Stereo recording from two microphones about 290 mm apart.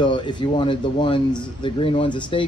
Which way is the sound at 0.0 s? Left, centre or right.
Centre.